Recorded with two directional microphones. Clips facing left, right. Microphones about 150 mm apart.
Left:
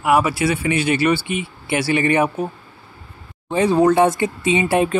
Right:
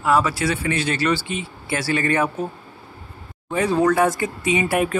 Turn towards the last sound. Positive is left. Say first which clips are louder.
# left 3 dB
turn(degrees=25)  # may be behind; listen again after turning